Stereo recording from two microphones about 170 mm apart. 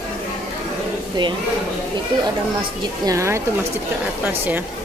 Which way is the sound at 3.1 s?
15° right (ahead or behind).